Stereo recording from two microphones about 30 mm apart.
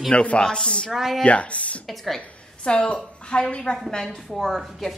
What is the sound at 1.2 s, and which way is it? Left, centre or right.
Speech, left.